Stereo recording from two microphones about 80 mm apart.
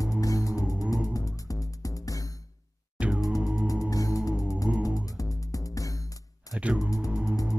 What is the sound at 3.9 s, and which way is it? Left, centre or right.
Music, left.